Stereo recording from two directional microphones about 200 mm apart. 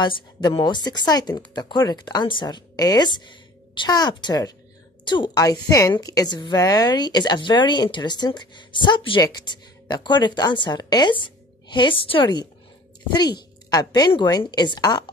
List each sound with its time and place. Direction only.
0.0 s a woman's voice: 20° left (ahead or behind)
13.7 s a woman's voice: 20° left (ahead or behind)